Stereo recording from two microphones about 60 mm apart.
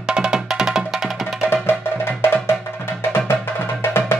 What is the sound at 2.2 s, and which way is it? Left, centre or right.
Music, left.